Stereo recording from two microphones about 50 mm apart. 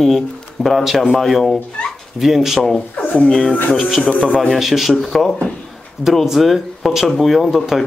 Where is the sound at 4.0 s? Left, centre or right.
Left.